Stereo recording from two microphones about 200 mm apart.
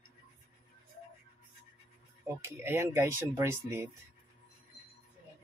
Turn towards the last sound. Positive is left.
turn(degrees=-15)  # may be behind; listen again after turning